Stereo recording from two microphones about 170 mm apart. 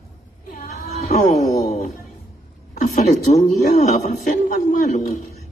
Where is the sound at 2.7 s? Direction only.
45° left (ahead or behind).